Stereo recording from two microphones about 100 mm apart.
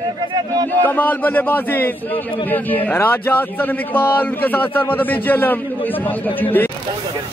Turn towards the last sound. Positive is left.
turn(degrees=20)  # may be behind; listen again after turning